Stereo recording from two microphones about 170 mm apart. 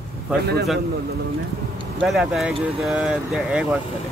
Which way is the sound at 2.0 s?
Centre (ahead or behind).